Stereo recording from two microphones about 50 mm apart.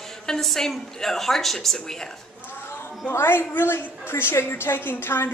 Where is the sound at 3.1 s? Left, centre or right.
Left.